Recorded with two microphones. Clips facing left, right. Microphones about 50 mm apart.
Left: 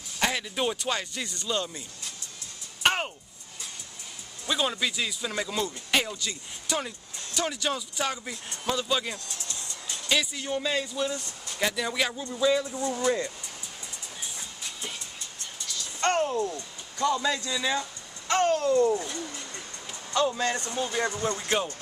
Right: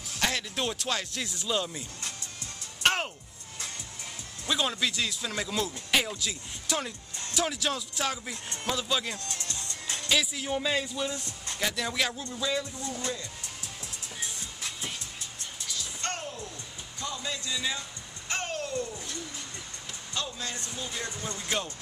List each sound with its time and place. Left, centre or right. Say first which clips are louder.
0.2 s speech: left 3 dB; centre
2.8 s music: left 1 dB; centre
4.5 s speech: left 1 dB; centre
9.2 s music: right 1 dB; right
10.0 s speech: left 1 dB; centre
16.1 s a sound: left 14 dB; left
17.0 s speech: left 10 dB; left
18.3 s babbling: left 10 dB; left
20.3 s speech: left 9 dB; left